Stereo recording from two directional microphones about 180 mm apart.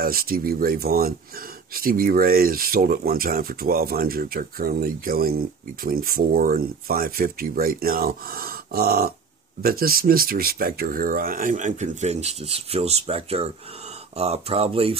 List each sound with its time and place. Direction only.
0.0 s speech: 55° right (ahead or behind); by 15.0 s 30° right (ahead or behind)